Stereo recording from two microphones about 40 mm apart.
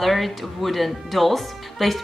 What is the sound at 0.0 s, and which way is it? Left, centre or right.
Speech, centre.